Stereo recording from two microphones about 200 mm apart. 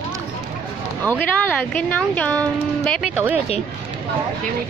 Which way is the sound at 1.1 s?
10° left (ahead or behind).